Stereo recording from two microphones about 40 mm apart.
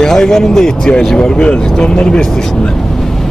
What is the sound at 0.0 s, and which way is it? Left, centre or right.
Speech, centre.